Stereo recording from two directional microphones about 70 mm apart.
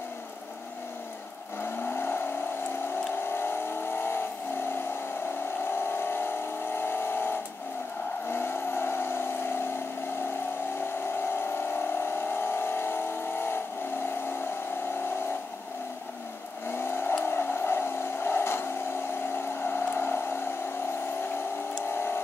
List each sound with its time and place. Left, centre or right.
1.6 s vehicle: left
3.3 s vehicle: left
5.7 s vehicle: left
11.2 s vehicle: left
16.7 s vehicle: left
21.9 s vehicle: left